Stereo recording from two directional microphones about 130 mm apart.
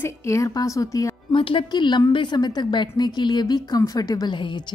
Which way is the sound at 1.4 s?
40° left (ahead or behind).